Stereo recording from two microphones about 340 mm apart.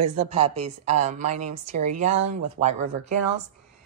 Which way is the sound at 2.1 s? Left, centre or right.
Right.